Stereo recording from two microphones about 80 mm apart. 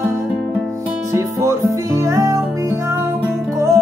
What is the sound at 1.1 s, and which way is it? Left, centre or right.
Music, right.